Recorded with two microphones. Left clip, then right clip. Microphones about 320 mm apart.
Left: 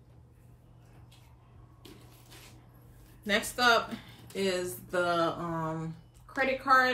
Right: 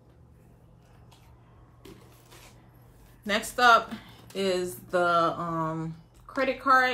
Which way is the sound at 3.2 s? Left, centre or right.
Centre.